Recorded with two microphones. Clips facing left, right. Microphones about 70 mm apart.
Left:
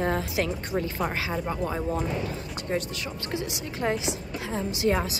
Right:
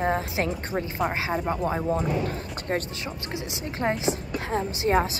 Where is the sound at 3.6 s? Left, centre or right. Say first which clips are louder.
Right 4 dB; right.